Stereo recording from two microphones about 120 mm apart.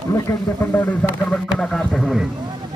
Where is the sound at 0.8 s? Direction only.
10° left (ahead or behind).